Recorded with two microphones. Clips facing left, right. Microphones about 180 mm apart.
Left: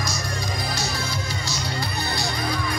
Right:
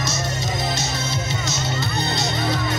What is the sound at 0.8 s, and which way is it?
Music, 20° right (ahead or behind).